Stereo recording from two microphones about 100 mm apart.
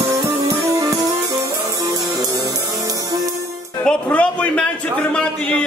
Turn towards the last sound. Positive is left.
turn(degrees=10)  # may be behind; listen again after turning